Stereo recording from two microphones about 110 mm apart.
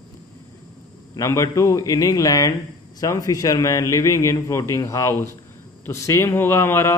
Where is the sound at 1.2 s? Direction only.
30° left (ahead or behind).